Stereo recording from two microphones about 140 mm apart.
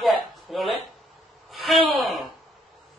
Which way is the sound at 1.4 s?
Centre (ahead or behind).